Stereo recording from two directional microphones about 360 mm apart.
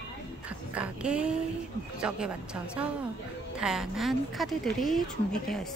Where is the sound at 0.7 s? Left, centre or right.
Centre.